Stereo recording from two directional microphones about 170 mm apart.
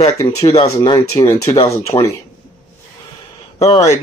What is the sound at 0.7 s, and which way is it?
Speech, 20° left (ahead or behind).